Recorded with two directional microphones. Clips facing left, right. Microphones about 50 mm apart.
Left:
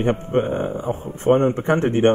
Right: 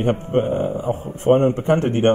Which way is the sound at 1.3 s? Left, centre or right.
Centre.